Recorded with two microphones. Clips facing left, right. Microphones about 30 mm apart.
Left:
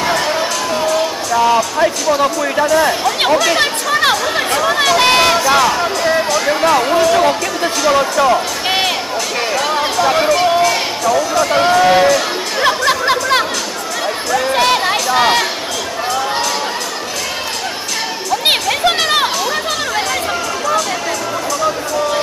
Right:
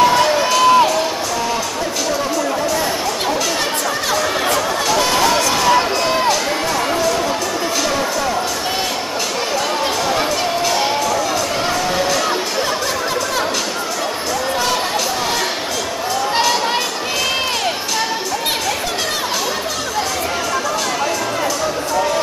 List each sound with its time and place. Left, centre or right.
3.4 s chatter: left
4.6 s run: left
8.2 s speech: left
10.0 s crowd: centre
11.5 s speech: left
12.6 s music: left
14.3 s a sound: left
18.4 s a sound: left